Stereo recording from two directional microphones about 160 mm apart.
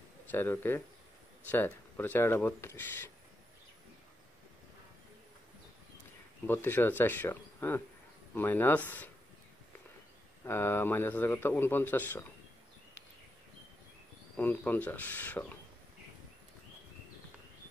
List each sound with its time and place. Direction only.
0.3 s speech: 10° left (ahead or behind)
6.4 s speech: 15° left (ahead or behind)
10.4 s speech: 15° left (ahead or behind)
14.3 s speech: 10° left (ahead or behind)